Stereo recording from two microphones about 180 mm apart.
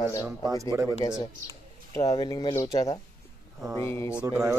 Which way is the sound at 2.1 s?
25° left (ahead or behind).